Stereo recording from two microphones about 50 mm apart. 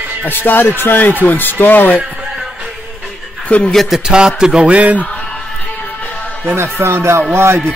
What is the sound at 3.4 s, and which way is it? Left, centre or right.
Speech, left.